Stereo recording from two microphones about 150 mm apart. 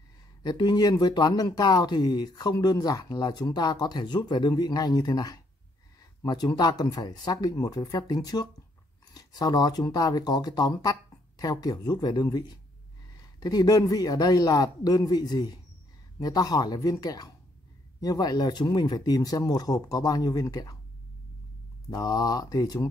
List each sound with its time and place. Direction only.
0.4 s speech: 30° left (ahead or behind)
21.9 s speech: 25° left (ahead or behind)